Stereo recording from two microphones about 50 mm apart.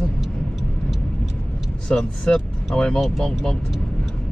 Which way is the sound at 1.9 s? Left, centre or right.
Centre.